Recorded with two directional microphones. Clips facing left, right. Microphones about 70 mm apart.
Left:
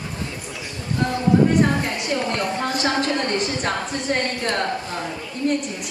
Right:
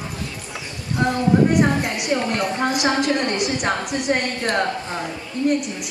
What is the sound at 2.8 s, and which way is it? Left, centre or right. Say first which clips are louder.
Speech: right 1 dB; centre.